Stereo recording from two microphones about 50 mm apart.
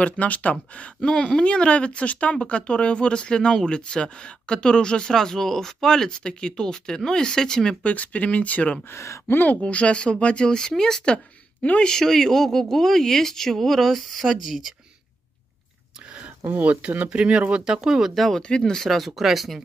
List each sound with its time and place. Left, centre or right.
0.0 s speech: left
1.0 s speech: centre
7.8 s speech: left
8.9 s speech: left
9.3 s speech: left
9.6 s speech: left; by 14.6 s centre
17.1 s speech: right
18.1 s speech: centre